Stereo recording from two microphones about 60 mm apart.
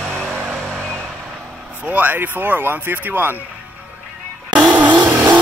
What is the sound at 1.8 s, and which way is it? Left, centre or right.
Speech, right.